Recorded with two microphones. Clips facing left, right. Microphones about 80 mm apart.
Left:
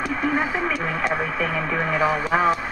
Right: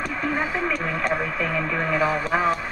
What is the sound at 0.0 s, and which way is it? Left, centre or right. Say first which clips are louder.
Speech: left 3 dB; centre.